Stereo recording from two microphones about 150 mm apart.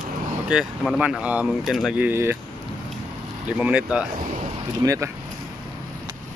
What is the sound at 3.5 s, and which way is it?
Speech, 10° right (ahead or behind).